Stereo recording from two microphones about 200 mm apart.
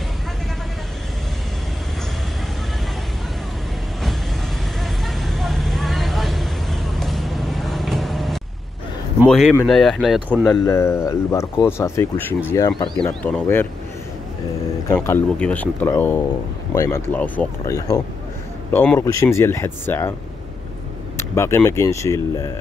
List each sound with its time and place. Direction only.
4.8 s vehicle: centre (ahead or behind)
9.3 s speech: centre (ahead or behind)
10.5 s speech: 15° left (ahead or behind)
13.2 s speech: 10° left (ahead or behind)
15.0 s speech: 10° left (ahead or behind)
21.2 s speech: 10° left (ahead or behind)